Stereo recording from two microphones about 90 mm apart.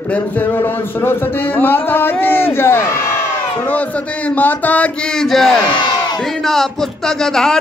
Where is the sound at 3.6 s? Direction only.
20° left (ahead or behind).